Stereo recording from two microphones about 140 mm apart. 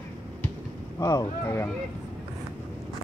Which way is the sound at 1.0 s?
25° left (ahead or behind).